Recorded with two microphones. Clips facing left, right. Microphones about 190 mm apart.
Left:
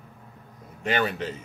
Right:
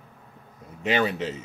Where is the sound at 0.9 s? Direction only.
5° right (ahead or behind).